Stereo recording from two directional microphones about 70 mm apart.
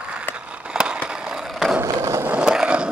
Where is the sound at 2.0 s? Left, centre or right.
Right.